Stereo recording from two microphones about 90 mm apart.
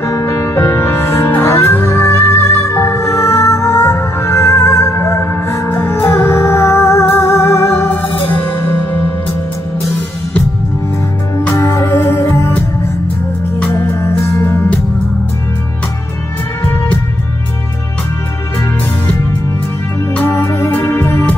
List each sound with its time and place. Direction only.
0.0 s music: 35° left (ahead or behind)
11.5 s music: 35° left (ahead or behind)
13.7 s music: 35° left (ahead or behind)
20.2 s music: 35° left (ahead or behind)